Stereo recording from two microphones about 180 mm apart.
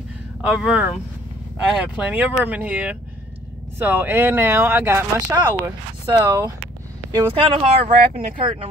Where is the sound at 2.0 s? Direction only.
10° right (ahead or behind).